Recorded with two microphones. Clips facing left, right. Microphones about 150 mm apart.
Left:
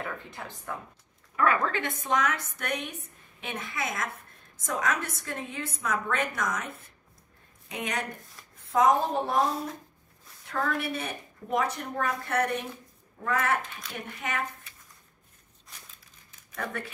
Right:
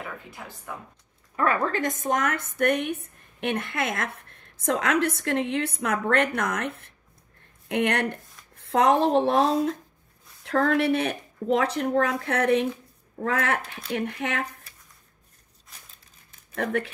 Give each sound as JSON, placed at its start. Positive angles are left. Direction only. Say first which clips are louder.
{"t": 0.0, "sound": "speech", "louder": "left 1 dB", "side_deg": -5}
{"t": 1.3, "sound": "speech", "louder": "right 1 dB", "side_deg": -35}
{"t": 8.5, "sound": "a woman's voice", "louder": "right 2 dB", "side_deg": -80}